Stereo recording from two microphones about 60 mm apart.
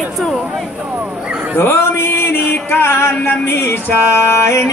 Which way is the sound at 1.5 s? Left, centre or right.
Left.